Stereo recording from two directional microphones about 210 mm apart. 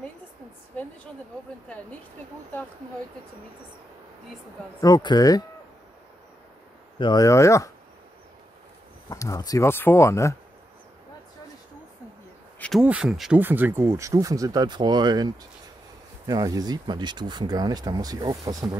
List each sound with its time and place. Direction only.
4.8 s speech: 20° left (ahead or behind)
7.0 s speech: 20° left (ahead or behind)
9.1 s speech: 15° left (ahead or behind)
12.5 s a sound: 5° left (ahead or behind)
12.8 s speech: 5° right (ahead or behind)